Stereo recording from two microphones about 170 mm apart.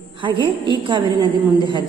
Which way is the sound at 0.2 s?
30° right (ahead or behind).